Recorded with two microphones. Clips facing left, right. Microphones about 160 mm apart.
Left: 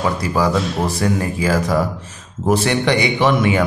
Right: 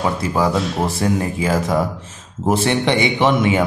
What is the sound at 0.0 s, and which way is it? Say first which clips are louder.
Speech: even; 20° right (ahead or behind).